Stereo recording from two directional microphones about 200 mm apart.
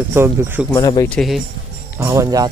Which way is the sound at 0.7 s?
20° left (ahead or behind).